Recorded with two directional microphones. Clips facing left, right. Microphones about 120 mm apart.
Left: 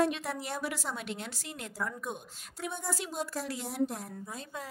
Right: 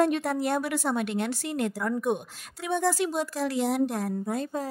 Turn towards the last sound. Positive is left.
turn(degrees=-70)  # may be behind; listen again after turning